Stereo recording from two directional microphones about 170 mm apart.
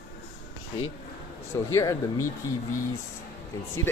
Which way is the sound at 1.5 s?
20° left (ahead or behind).